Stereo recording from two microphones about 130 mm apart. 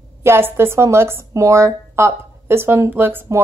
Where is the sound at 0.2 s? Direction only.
20° right (ahead or behind).